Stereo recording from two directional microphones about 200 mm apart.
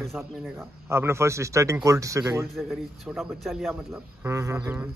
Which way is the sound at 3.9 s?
15° right (ahead or behind).